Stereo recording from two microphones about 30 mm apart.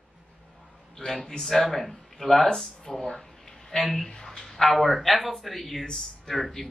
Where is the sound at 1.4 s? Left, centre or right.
Centre.